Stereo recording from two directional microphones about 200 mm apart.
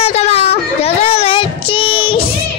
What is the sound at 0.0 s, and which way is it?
Child singing, 30° left (ahead or behind).